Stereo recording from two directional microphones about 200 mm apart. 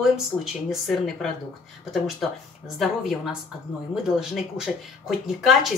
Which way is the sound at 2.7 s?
Centre (ahead or behind).